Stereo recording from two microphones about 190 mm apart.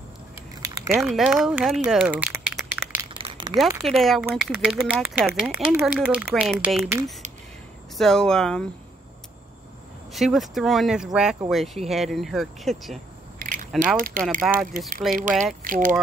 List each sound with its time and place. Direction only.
1.0 s speech: centre (ahead or behind)
1.9 s crumpling: 5° right (ahead or behind)
3.2 s a sound: 25° right (ahead or behind)
3.8 s speech: centre (ahead or behind)
8.0 s speech: centre (ahead or behind)
10.1 s speech: centre (ahead or behind)
13.4 s keys jangling: 45° right (ahead or behind)
13.9 s speech: 45° right (ahead or behind)
14.5 s speech: 5° right (ahead or behind)
15.0 s speech: 45° right (ahead or behind)